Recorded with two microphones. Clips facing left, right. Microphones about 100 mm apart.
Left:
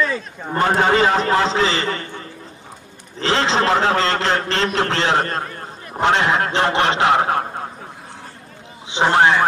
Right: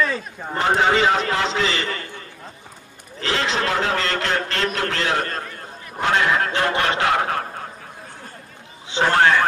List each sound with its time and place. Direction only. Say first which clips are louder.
0.0 s speech: left 1 dB; 5° right (ahead or behind)
0.7 s a man's voice: left 1 dB; 40° left (ahead or behind)
3.2 s a man's voice: left 5 dB; 30° left (ahead or behind)
5.9 s honk: left 3 dB; 25° left (ahead or behind)
8.8 s a man's voice: left 2 dB; 20° left (ahead or behind)